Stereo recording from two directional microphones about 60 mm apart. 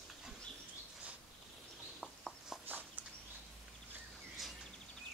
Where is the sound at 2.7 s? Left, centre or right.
Right.